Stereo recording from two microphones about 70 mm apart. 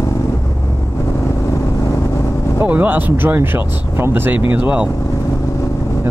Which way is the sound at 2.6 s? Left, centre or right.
Right.